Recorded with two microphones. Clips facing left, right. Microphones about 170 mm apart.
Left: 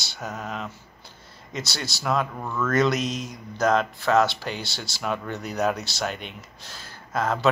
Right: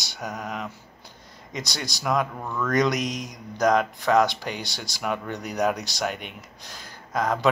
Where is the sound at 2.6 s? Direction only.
15° right (ahead or behind).